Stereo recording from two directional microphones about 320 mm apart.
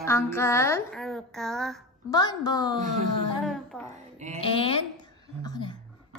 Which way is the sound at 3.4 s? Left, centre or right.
Centre.